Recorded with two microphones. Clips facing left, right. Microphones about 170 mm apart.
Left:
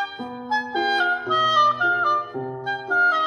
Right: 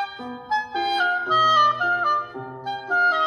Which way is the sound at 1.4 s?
5° right (ahead or behind).